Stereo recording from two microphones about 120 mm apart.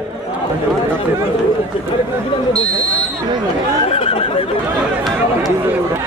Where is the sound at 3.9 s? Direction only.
50° left (ahead or behind).